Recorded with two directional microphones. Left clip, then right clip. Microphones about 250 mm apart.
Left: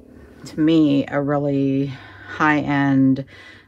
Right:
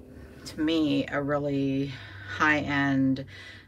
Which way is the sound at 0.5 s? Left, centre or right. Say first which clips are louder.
Left 9 dB; left.